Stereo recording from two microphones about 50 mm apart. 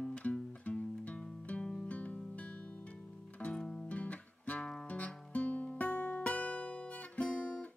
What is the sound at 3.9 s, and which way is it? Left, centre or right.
Music, left.